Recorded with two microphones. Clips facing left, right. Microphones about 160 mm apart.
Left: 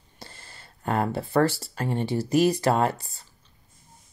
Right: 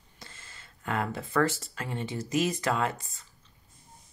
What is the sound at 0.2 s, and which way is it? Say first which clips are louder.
Speech: left 5 dB; 35° left (ahead or behind).